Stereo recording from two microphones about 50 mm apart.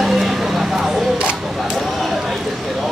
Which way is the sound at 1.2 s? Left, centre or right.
Right.